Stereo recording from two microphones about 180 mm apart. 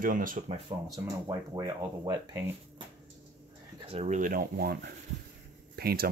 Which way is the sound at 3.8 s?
35° right (ahead or behind).